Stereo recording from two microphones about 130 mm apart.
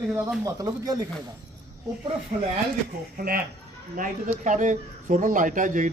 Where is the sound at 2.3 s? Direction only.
90° right.